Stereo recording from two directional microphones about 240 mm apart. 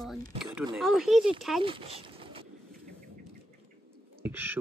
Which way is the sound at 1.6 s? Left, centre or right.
Right.